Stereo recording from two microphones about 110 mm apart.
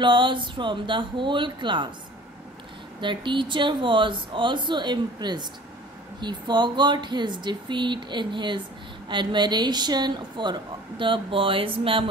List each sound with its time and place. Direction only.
0.0 s speech: 50° right (ahead or behind)
3.0 s speech: 45° right (ahead or behind)